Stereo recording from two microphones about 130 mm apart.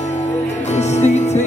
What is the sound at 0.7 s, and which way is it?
Music, 60° left (ahead or behind).